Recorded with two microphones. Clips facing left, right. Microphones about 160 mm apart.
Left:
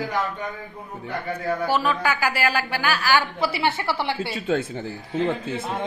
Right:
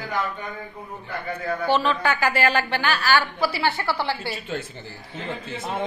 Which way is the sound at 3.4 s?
20° left (ahead or behind).